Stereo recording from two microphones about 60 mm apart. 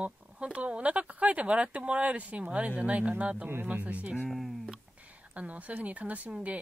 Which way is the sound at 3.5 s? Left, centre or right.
Right.